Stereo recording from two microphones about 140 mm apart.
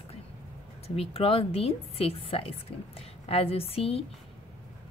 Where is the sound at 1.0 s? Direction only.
45° left (ahead or behind).